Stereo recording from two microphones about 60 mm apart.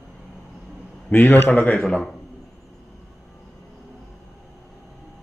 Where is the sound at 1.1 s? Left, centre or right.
Left.